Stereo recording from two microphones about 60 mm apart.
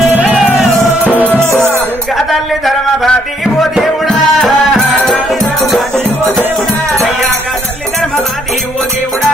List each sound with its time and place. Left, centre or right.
0.2 s music: centre
1.0 s music: left
2.1 s a sound: centre
3.5 s music: centre